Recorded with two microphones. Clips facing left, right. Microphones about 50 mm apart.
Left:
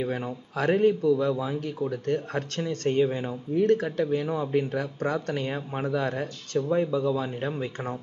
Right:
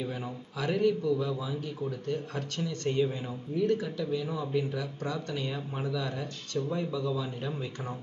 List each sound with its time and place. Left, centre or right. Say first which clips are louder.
0.0 s a man's voice: left 6 dB; left